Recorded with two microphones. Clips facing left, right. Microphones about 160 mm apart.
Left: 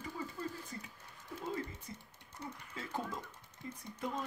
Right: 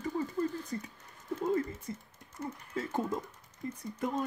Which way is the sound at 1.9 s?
55° right (ahead or behind).